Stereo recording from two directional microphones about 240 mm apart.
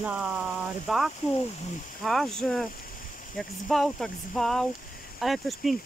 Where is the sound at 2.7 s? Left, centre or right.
Left.